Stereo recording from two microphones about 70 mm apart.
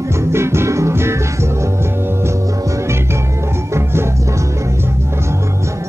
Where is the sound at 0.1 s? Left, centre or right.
Right.